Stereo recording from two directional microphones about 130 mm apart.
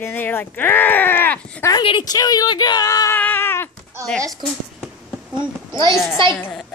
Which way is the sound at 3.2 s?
15° left (ahead or behind).